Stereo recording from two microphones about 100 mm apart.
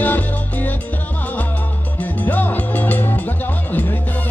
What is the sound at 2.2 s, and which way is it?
Music, 20° left (ahead or behind).